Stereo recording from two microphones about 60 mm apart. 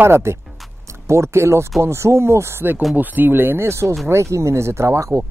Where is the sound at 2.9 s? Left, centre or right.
Right.